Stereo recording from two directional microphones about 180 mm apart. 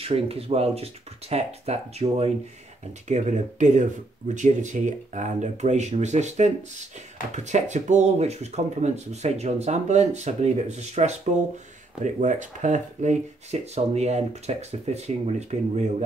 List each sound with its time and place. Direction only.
0.0 s speech: 35° right (ahead or behind)